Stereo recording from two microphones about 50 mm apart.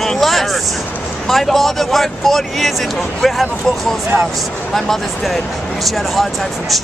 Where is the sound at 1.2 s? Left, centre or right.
Centre.